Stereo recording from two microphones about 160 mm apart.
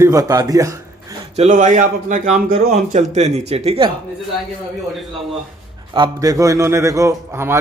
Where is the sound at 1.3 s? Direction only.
45° right (ahead or behind).